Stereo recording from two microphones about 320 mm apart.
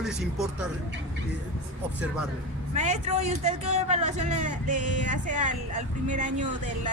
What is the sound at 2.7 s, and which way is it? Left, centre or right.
A man's voice, right.